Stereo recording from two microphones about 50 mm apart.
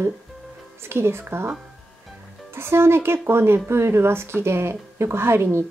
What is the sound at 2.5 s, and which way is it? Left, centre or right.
Speech, right.